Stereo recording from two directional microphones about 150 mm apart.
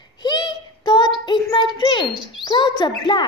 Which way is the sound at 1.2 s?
30° left (ahead or behind).